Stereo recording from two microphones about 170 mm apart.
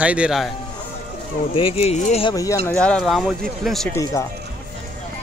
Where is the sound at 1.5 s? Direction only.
35° left (ahead or behind).